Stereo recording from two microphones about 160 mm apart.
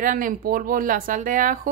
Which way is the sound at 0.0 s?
55° right (ahead or behind).